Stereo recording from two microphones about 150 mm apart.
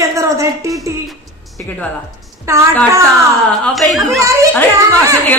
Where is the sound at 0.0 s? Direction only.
20° right (ahead or behind).